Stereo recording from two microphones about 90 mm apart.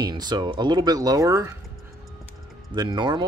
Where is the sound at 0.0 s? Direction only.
50° right (ahead or behind); by 1.5 s 35° right (ahead or behind).